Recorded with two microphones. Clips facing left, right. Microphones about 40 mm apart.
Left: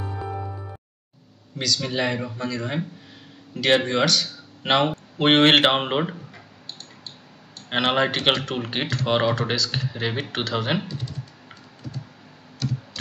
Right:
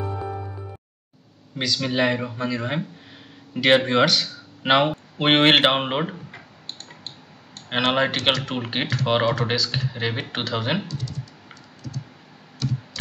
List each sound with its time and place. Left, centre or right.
1.6 s speech: right; by 6.1 s centre
6.3 s tick-tock: right
7.9 s speech: centre
8.2 s speech: left
8.5 s speech: centre
10.9 s typing: left
12.6 s tick: centre